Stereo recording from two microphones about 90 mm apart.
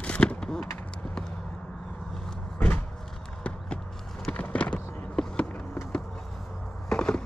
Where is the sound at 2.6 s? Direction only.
20° left (ahead or behind).